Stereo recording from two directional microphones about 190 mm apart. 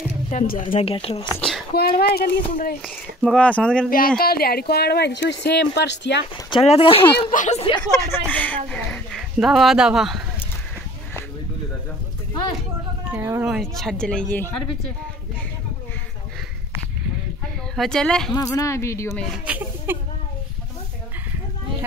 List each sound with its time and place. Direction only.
0.3 s speech: 45° left (ahead or behind)
0.7 s speech: 30° left (ahead or behind)
1.8 s speech: 55° left (ahead or behind)
2.8 s speech: 5° left (ahead or behind)
4.2 s speech: 55° left (ahead or behind)
6.5 s speech: 30° left (ahead or behind)
7.7 s speech: 15° left (ahead or behind); by 10.2 s centre (ahead or behind)
13.1 s speech: 15° right (ahead or behind)
13.6 s speech: centre (ahead or behind)
17.7 s speech: 5° left (ahead or behind)
18.3 s speech: 20° left (ahead or behind)
19.3 s a sound: 10° right (ahead or behind)